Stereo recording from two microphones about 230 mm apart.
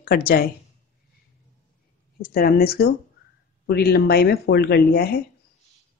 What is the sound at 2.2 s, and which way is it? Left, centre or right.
Speech, left.